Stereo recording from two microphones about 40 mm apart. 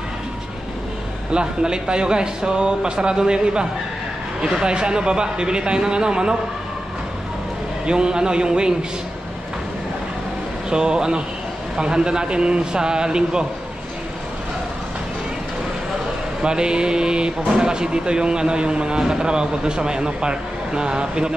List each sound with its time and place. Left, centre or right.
1.3 s speech: right
7.8 s speech: right
10.7 s speech: centre
16.4 s speech: right